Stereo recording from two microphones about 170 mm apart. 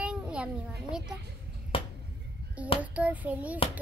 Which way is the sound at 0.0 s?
5° right (ahead or behind).